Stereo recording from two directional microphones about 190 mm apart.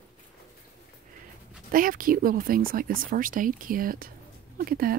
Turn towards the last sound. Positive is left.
turn(degrees=-50)  # may be behind; listen again after turning